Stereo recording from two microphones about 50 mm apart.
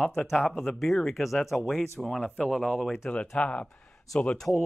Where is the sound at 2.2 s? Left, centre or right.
Centre.